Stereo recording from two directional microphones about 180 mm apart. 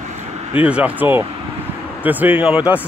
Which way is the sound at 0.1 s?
40° right (ahead or behind).